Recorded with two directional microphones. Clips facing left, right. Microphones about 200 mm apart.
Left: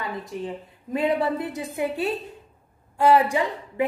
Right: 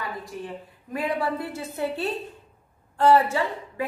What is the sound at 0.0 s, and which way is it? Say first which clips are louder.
A woman's voice: left 3 dB; 20° left (ahead or behind).